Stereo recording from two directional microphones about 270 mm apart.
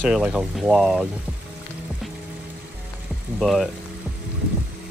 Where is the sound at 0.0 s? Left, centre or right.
Centre.